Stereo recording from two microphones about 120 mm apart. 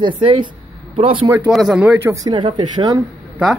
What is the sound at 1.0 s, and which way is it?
Speech, 55° right (ahead or behind).